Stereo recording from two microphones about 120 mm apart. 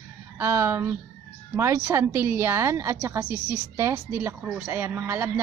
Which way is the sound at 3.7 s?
25° right (ahead or behind).